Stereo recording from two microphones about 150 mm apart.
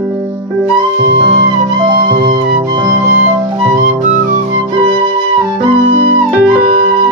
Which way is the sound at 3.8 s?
55° right (ahead or behind).